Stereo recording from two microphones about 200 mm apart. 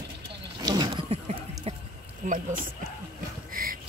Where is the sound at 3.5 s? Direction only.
45° right (ahead or behind).